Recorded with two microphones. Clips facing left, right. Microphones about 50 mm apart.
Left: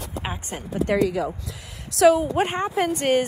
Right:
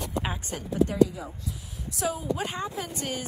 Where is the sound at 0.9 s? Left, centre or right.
Left.